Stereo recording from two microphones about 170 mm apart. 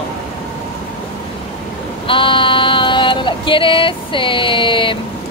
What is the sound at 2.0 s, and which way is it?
Female singing, 30° left (ahead or behind).